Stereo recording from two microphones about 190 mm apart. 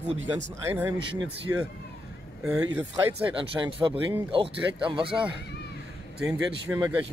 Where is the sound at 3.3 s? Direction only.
25° right (ahead or behind).